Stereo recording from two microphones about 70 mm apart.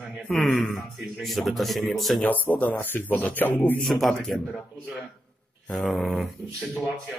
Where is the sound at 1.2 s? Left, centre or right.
Centre.